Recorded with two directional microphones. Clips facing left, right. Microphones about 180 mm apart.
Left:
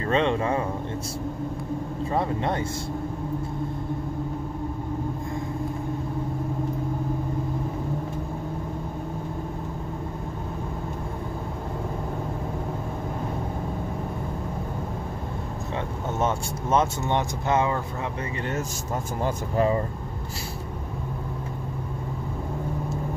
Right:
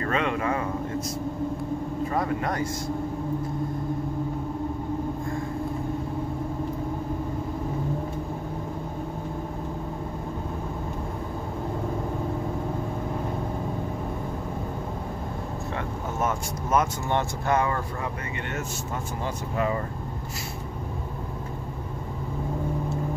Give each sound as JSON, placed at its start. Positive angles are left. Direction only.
{"t": 0.0, "sound": "speech", "side_deg": 30}
{"t": 2.0, "sound": "speech", "side_deg": 25}
{"t": 16.2, "sound": "speech", "side_deg": 25}
{"t": 19.5, "sound": "speech", "side_deg": 35}